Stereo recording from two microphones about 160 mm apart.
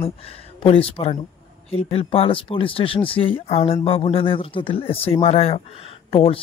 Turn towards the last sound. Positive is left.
turn(degrees=35)  # may be behind; listen again after turning